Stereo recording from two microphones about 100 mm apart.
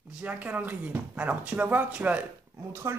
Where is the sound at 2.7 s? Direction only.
25° right (ahead or behind).